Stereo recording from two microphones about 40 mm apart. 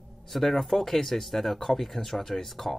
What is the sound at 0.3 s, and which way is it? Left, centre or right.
Speech, centre.